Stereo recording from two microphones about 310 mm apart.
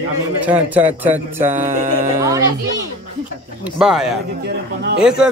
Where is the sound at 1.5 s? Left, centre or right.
Right.